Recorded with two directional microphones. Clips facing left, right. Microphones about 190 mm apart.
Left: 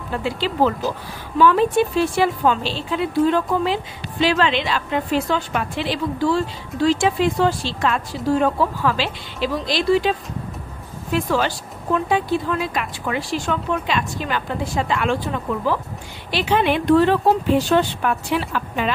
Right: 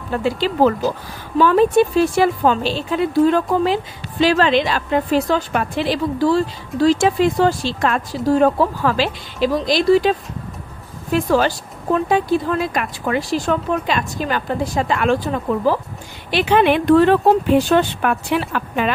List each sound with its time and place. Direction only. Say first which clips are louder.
0.2 s a woman's voice: right 4 dB; 45° right (ahead or behind)
11.2 s a woman's voice: right 4 dB; 40° right (ahead or behind)
16.3 s speech: right 4 dB; 60° right (ahead or behind)